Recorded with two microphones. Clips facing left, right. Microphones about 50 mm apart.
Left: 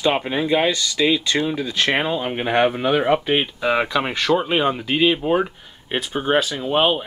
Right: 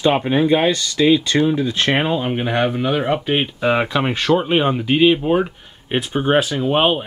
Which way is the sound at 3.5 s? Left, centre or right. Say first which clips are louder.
Right 2 dB; centre.